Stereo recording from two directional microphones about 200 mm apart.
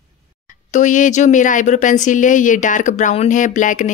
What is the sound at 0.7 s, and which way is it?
Speech, 40° left (ahead or behind).